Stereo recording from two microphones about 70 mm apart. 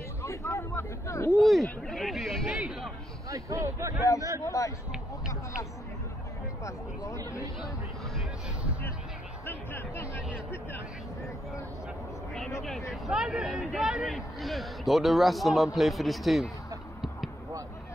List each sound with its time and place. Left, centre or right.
0.2 s a sound: left
1.4 s speech: centre
2.5 s a man's voice: centre
3.3 s speech: right
4.5 s speech: left
6.6 s speech: left
9.5 s speech: left
12.9 s speech: centre